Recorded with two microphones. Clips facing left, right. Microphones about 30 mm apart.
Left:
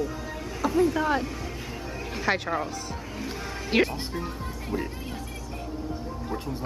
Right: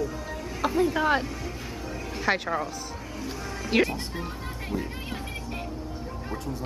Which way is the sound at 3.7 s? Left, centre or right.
Centre.